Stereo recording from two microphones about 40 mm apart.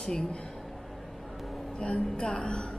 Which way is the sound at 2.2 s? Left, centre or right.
Left.